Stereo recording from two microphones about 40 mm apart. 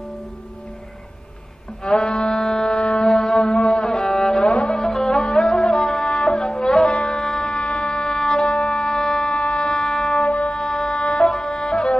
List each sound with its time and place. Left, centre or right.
1.8 s music: left
2.7 s a sound: left
3.4 s music: left
4.2 s cello: left
4.8 s music: centre
5.6 s wind instrument: left
7.5 s a sound: left
8.5 s wind instrument: left
10.1 s music: left
10.6 s music: centre
11.2 s music: centre
11.6 s music: left